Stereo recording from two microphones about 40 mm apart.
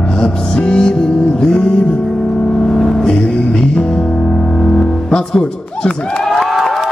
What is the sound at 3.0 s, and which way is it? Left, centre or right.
Music, left.